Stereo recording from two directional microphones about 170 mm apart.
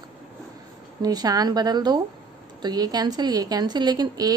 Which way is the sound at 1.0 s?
20° right (ahead or behind).